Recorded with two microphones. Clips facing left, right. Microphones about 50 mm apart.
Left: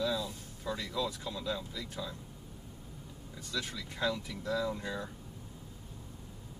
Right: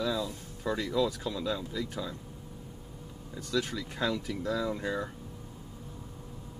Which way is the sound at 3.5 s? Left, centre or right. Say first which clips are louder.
Right 7 dB; right.